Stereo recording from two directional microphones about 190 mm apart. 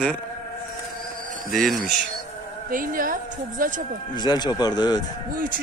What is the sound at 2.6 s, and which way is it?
A woman's voice, 45° right (ahead or behind).